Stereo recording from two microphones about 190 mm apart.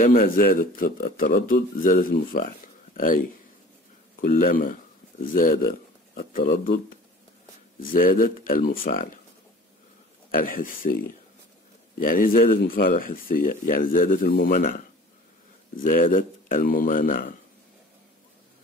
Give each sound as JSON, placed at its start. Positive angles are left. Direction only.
{"t": 0.0, "sound": "speech", "side_deg": 50}
{"t": 4.2, "sound": "speech", "side_deg": 50}
{"t": 10.3, "sound": "speech", "side_deg": 50}